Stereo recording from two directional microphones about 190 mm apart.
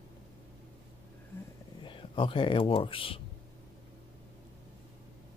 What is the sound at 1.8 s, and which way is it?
Speech, 25° left (ahead or behind).